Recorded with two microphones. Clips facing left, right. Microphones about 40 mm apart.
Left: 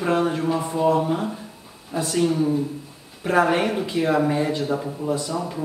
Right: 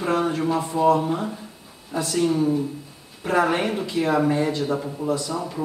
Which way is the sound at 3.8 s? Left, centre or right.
Centre.